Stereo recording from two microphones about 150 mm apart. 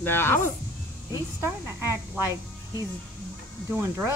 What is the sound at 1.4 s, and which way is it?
Speech, 15° right (ahead or behind).